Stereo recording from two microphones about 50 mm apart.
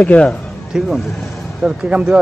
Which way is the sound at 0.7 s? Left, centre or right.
Centre.